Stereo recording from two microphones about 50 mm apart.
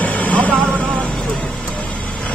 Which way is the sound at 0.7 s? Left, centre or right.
Right.